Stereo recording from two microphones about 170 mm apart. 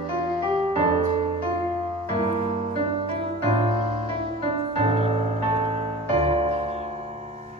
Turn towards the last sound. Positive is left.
turn(degrees=-35)  # may be behind; listen again after turning